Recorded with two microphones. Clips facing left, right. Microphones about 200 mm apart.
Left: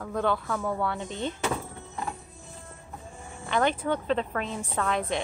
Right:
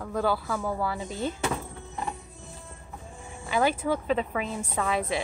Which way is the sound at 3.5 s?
5° right (ahead or behind).